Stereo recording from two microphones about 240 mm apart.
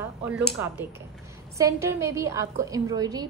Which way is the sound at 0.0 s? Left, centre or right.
Centre.